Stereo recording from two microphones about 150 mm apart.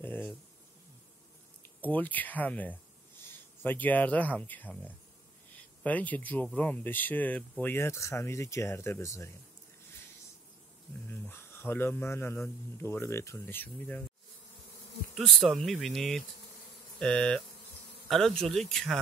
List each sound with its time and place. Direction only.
0.0 s speech: 15° left (ahead or behind)
1.8 s speech: 10° left (ahead or behind)
11.1 s speech: 15° left (ahead or behind)
15.1 s speech: centre (ahead or behind)